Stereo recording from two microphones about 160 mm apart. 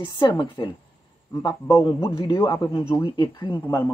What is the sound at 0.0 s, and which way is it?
Speech, 30° left (ahead or behind).